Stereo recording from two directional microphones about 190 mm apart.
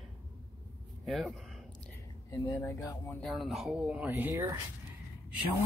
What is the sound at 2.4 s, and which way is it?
Speech, 15° left (ahead or behind).